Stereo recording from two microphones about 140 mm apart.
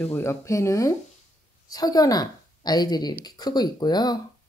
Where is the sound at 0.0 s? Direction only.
15° left (ahead or behind).